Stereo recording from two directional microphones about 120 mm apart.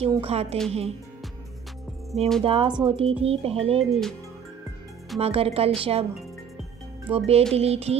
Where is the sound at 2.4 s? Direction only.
50° right (ahead or behind).